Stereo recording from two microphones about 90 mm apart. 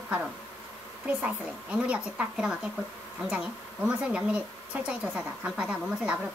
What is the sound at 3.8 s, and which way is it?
A woman's voice, 10° right (ahead or behind).